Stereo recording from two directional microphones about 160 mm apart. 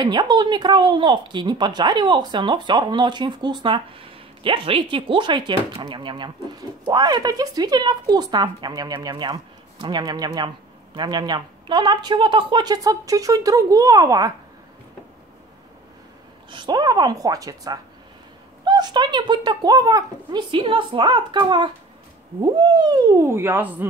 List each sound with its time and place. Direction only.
0.0 s speech: 25° right (ahead or behind)
16.4 s speech: 30° right (ahead or behind); by 23.9 s 15° right (ahead or behind)